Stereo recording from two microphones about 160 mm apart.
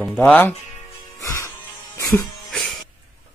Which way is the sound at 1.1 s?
20° left (ahead or behind).